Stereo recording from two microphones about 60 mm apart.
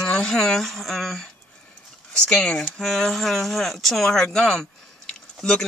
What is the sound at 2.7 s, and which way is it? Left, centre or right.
Speech, centre.